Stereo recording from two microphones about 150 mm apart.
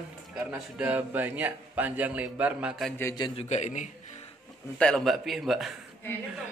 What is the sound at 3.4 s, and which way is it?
Speech, 50° left (ahead or behind).